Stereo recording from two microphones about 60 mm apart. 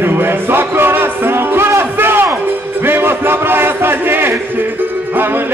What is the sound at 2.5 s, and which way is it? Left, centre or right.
Music, right.